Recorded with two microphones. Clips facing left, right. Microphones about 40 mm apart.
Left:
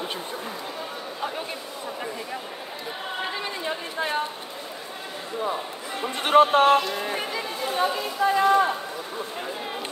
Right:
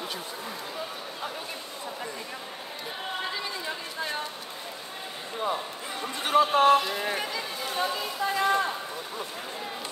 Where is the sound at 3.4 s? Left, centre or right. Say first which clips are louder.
Left 4 dB; left.